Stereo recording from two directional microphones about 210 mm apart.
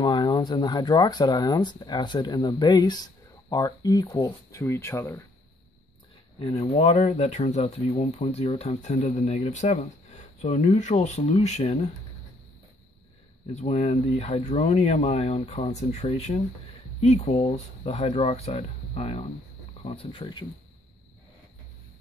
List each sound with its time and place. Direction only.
0.0 s speech: 20° left (ahead or behind)
6.4 s speech: 25° left (ahead or behind)
13.6 s speech: 30° left (ahead or behind)